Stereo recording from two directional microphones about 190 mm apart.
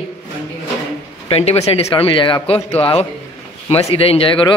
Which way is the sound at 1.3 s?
35° left (ahead or behind).